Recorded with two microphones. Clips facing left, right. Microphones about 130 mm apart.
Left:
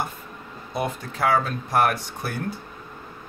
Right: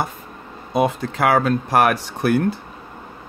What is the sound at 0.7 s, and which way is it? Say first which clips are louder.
Speech: right 8 dB; 90° right.